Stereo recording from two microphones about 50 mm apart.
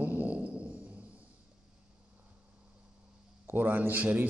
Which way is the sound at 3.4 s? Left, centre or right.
Right.